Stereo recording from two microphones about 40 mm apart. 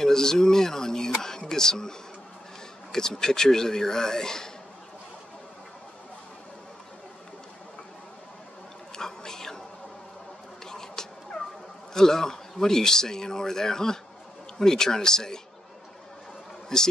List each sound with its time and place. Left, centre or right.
0.0 s a sound: centre
1.5 s speech: centre
8.9 s whispering: centre
10.6 s cat: centre
11.9 s speech: centre
16.7 s speech: centre